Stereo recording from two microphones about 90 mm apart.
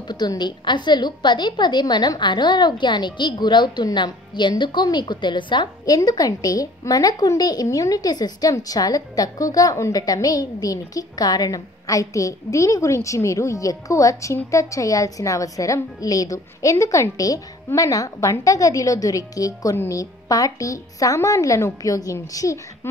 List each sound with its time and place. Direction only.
0.1 s a woman's voice: 50° left (ahead or behind)
5.9 s a woman's voice: 45° left (ahead or behind)